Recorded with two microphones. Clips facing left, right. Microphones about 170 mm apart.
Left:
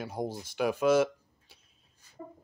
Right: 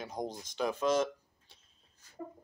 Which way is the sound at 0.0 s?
5° left (ahead or behind).